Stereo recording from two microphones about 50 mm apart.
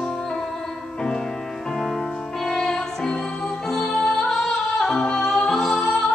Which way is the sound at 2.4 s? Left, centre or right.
Centre.